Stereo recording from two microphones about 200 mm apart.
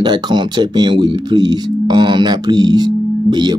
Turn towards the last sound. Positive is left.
turn(degrees=-20)  # may be behind; listen again after turning